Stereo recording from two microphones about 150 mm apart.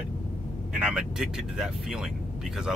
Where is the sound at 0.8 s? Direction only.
5° right (ahead or behind).